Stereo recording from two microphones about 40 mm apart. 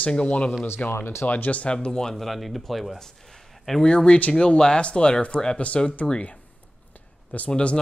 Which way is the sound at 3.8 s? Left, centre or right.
Left.